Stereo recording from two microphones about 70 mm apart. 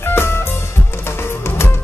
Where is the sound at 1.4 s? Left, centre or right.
Left.